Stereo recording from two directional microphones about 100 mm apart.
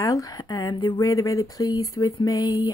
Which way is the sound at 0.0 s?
35° left (ahead or behind).